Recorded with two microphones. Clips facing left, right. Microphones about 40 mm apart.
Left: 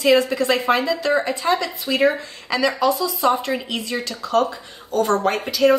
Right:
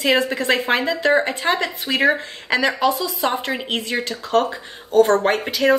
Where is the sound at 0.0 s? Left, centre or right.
Right.